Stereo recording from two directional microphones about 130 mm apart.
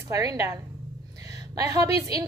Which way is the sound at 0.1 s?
25° right (ahead or behind).